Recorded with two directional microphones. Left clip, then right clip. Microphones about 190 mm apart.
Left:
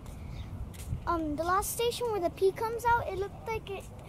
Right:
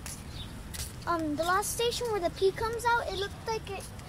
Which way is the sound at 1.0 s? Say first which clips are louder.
Right 1 dB; 15° left (ahead or behind).